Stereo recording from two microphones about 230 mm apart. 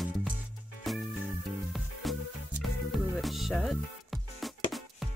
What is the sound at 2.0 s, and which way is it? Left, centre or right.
Music, centre.